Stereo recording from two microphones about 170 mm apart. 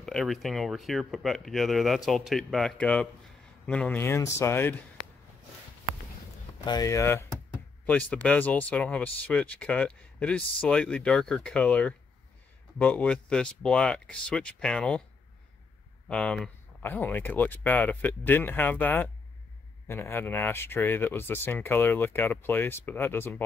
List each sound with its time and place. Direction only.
0.0 s speech: 5° left (ahead or behind)
6.6 s speech: 20° left (ahead or behind); by 15.0 s 5° left (ahead or behind)
16.1 s speech: 5° left (ahead or behind)